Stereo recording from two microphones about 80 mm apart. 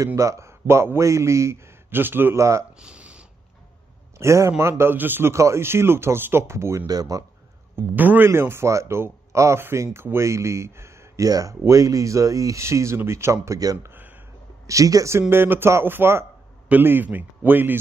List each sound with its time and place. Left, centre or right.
0.0 s speech: right
2.3 s speech: right
2.8 s a sound: centre
4.2 s speech: right
6.9 s speech: right
7.7 s a man's voice: right
11.2 s speech: right
13.8 s a sound: right
14.7 s speech: right
15.1 s a man's voice: right